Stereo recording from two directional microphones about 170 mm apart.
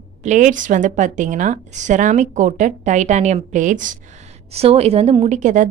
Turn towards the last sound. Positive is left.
turn(degrees=-45)  # may be behind; listen again after turning